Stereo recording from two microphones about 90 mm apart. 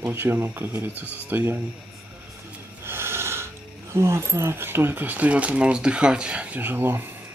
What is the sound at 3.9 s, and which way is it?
Speech, 30° right (ahead or behind).